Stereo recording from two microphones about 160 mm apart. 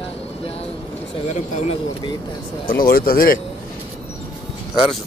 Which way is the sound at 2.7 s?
65° left (ahead or behind).